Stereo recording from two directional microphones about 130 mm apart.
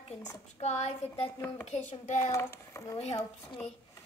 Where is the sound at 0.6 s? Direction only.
55° left (ahead or behind).